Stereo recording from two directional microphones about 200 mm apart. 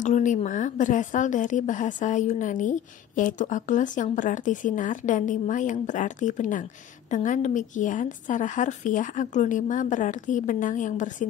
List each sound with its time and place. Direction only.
0.0 s a woman's voice: 35° left (ahead or behind)